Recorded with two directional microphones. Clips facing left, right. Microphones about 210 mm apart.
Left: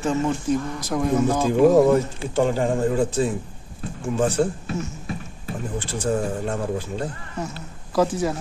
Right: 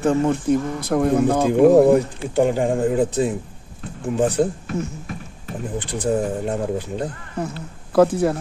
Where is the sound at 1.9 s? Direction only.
15° right (ahead or behind).